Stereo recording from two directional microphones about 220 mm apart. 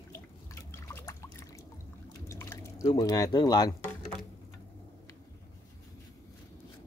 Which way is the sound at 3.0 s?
15° left (ahead or behind).